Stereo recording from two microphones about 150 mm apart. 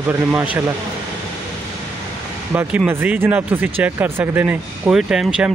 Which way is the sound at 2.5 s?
15° right (ahead or behind).